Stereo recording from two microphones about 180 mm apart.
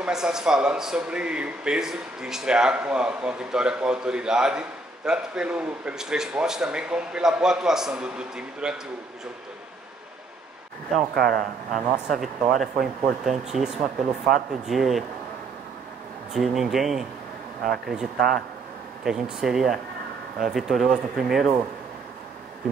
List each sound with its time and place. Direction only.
0.0 s speech: 5° right (ahead or behind)
10.9 s speech: centre (ahead or behind)
16.3 s speech: centre (ahead or behind)